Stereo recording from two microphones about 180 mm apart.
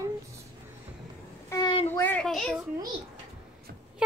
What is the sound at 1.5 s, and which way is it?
Child singing, 25° left (ahead or behind).